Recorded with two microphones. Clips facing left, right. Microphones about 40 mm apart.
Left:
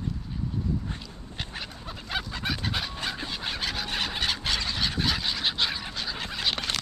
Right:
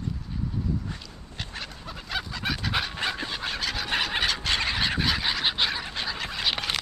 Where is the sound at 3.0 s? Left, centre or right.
Centre.